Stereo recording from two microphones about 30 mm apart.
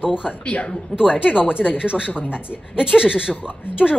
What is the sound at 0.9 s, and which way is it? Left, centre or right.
A woman's voice, right.